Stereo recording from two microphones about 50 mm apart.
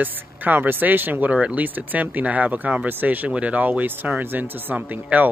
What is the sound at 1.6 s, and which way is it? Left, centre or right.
Speech, right.